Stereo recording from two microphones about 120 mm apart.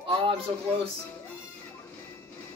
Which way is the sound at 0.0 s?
50° right (ahead or behind).